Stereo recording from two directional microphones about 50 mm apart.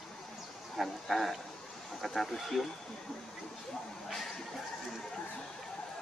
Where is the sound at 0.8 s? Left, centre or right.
Centre.